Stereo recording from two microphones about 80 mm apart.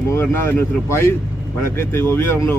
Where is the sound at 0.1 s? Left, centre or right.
Left.